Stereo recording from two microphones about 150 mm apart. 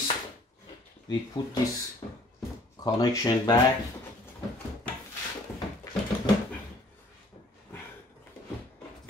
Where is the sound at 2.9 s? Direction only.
25° left (ahead or behind).